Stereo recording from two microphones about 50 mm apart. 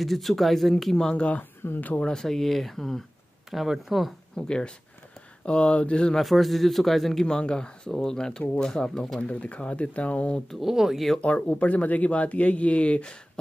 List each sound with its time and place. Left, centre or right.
0.0 s speech: centre
1.8 s speech: left
2.0 s speech: centre
3.4 s speech: centre
4.4 s speech: centre
6.1 s speech: centre
7.2 s speech: centre
9.2 s speech: left
10.6 s speech: centre
11.1 s speech: left